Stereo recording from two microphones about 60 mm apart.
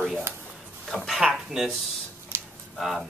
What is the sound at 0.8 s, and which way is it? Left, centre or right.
Speech, centre.